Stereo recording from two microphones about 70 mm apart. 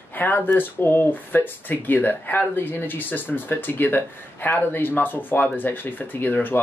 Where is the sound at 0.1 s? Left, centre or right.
Left.